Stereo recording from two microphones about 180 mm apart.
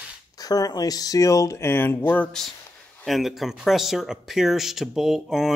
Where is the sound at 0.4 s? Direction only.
20° left (ahead or behind).